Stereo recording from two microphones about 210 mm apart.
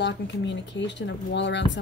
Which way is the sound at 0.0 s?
55° left (ahead or behind).